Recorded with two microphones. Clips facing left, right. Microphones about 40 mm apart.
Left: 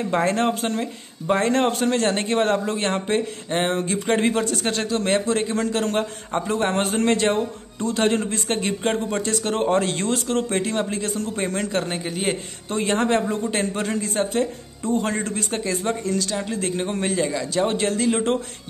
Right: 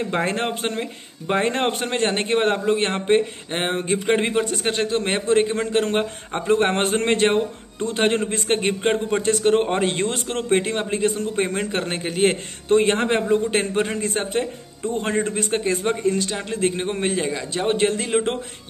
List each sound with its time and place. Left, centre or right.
0.0 s speech: right